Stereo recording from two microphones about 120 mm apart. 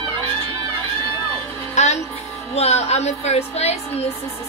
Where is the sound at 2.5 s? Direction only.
60° left (ahead or behind).